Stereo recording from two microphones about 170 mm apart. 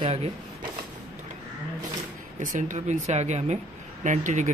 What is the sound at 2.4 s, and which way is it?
Speech, 45° right (ahead or behind).